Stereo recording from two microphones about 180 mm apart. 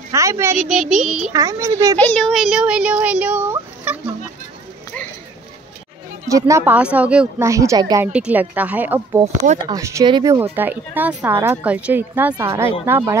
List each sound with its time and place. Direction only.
0.1 s speech: 15° right (ahead or behind)
0.7 s speech: 5° right (ahead or behind)
1.3 s a child's voice: 20° right (ahead or behind)
2.0 s speech: 5° left (ahead or behind); by 4.0 s 10° right (ahead or behind)
6.2 s speech: 20° right (ahead or behind)
8.1 s speech: 5° right (ahead or behind)
9.2 s speech: 40° right (ahead or behind)
9.7 s speech: 15° right (ahead or behind)